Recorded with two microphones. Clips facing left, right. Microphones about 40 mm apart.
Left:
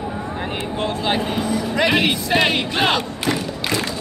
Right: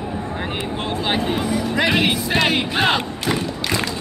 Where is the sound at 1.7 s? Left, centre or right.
Centre.